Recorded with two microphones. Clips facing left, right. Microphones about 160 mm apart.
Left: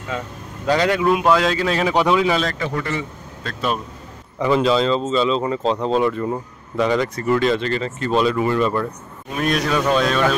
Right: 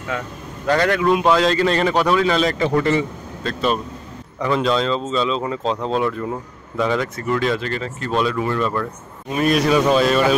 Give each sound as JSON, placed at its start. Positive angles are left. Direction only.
{"t": 0.7, "sound": "speech", "side_deg": 15}
{"t": 2.0, "sound": "speech", "side_deg": 15}
{"t": 2.6, "sound": "speech", "side_deg": -25}
{"t": 3.4, "sound": "speech", "side_deg": 5}